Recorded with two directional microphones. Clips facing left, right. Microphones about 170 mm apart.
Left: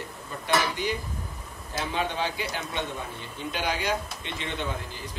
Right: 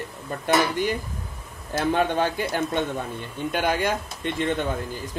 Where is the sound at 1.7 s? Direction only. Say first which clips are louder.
Right 7 dB; 50° right (ahead or behind).